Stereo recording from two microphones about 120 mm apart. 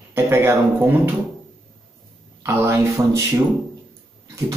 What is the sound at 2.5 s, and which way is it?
Speech, 20° right (ahead or behind).